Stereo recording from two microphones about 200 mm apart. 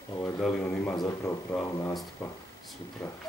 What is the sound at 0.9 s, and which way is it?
Speech, 20° left (ahead or behind).